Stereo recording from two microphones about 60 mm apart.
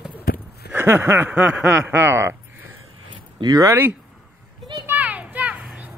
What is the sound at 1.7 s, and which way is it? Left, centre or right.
Speech, right.